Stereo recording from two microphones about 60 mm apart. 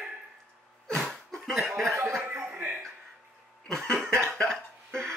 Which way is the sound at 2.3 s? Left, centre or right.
Right.